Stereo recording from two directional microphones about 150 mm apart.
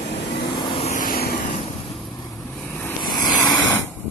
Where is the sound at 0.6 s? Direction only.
35° left (ahead or behind).